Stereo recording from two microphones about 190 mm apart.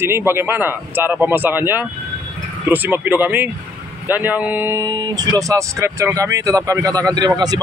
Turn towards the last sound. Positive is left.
turn(degrees=-20)  # may be behind; listen again after turning